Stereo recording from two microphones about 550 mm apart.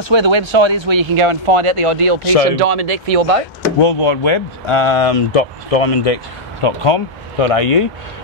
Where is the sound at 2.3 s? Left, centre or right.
Left.